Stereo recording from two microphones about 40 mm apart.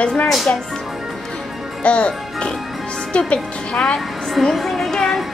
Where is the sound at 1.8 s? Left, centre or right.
Left.